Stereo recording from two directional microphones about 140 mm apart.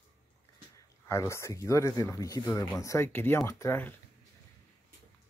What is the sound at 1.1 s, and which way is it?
Speech, 20° left (ahead or behind).